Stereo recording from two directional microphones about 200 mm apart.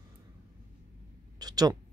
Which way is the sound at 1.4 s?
20° right (ahead or behind).